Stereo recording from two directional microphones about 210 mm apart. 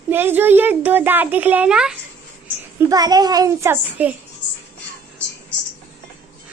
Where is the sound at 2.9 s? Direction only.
20° right (ahead or behind).